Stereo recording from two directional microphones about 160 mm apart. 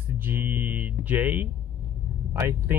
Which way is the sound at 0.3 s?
15° right (ahead or behind).